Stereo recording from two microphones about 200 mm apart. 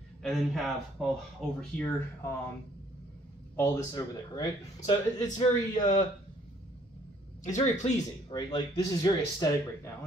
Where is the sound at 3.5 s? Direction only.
10° left (ahead or behind).